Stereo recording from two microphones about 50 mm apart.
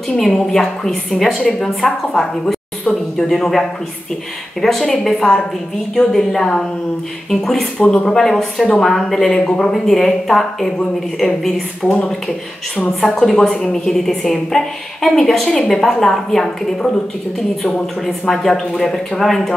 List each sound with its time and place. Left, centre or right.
0.1 s a woman's voice: centre
13.0 s a woman's voice: centre
18.0 s speech: centre